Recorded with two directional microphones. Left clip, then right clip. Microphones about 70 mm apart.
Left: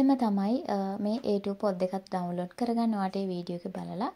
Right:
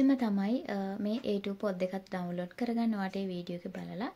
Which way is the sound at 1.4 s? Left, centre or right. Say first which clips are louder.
Left 4 dB; left.